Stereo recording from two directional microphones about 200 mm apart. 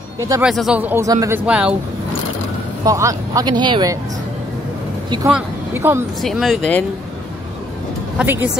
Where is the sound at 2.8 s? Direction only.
15° right (ahead or behind).